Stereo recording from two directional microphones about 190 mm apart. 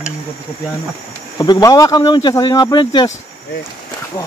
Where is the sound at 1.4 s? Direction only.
20° left (ahead or behind).